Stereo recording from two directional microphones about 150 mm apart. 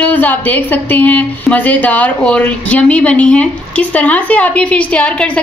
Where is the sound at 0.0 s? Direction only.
10° left (ahead or behind).